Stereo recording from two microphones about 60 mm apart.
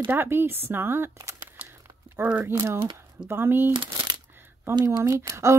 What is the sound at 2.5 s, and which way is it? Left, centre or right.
Speech, right.